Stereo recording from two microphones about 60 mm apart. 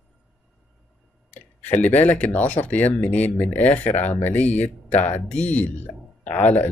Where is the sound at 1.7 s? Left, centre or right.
Left.